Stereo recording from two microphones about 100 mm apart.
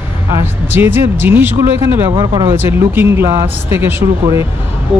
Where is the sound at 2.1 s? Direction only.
50° right (ahead or behind).